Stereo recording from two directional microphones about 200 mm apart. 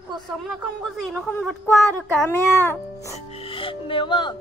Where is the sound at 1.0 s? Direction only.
Centre (ahead or behind).